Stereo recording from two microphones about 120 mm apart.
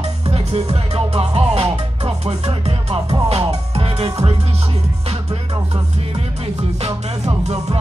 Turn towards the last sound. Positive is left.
turn(degrees=-60)  # may be behind; listen again after turning